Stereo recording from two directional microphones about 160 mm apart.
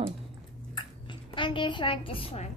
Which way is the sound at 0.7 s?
30° left (ahead or behind).